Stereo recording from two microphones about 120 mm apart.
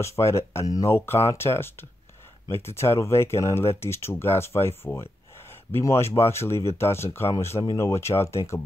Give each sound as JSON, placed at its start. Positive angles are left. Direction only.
{"t": 0.0, "sound": "speech", "side_deg": 25}